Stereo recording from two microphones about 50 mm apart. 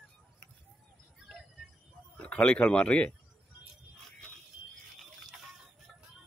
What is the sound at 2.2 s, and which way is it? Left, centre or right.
Speech, left.